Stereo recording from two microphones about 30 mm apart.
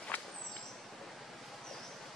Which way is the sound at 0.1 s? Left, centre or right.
Left.